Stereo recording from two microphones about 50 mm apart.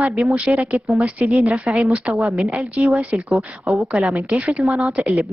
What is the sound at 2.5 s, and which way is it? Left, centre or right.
A woman's voice, right.